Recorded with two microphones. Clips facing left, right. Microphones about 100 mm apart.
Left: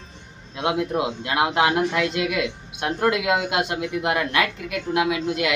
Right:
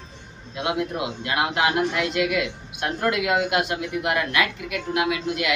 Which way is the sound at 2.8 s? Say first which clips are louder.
Left 2 dB; 25° left (ahead or behind).